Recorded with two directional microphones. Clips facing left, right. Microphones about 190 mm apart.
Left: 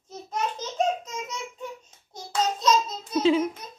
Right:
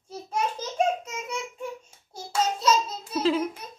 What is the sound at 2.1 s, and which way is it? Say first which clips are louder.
Hands: even; 10° right (ahead or behind).